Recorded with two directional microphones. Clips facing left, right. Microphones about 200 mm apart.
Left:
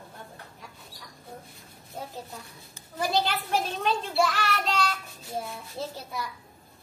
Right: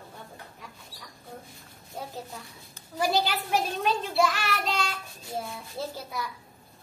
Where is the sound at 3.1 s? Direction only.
5° right (ahead or behind).